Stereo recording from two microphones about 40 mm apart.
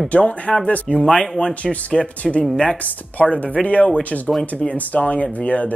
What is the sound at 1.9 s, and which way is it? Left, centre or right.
Speech, centre.